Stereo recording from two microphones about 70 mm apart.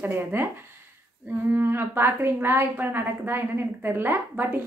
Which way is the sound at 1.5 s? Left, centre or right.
Right.